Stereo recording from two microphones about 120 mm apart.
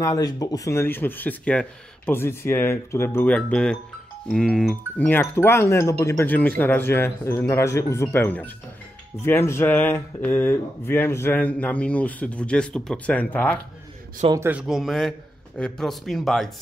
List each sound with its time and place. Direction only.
0.0 s speech: 30° left (ahead or behind)
3.3 s a man's voice: 10° left (ahead or behind)
5.0 s speech: 20° left (ahead or behind)
14.5 s a man's voice: 5° right (ahead or behind)